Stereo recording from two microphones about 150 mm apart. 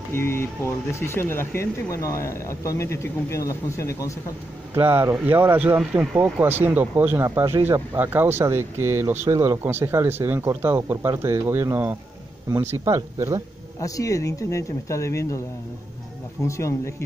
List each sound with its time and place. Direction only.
0.1 s speech: 15° left (ahead or behind)
4.7 s speech: 15° right (ahead or behind)
13.7 s speech: 20° left (ahead or behind)
16.4 s speech: 20° left (ahead or behind)